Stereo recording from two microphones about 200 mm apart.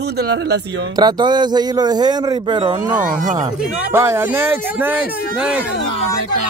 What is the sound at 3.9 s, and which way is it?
Speech, 15° right (ahead or behind).